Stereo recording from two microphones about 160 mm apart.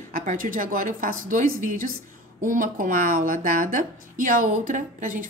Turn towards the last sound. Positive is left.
turn(degrees=-55)  # may be behind; listen again after turning